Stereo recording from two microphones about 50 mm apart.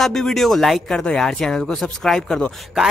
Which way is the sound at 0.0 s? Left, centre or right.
Centre.